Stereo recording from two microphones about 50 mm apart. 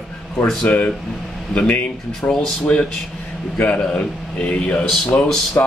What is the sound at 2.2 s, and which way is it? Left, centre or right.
Speech, left.